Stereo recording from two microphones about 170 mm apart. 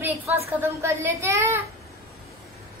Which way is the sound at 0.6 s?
15° right (ahead or behind).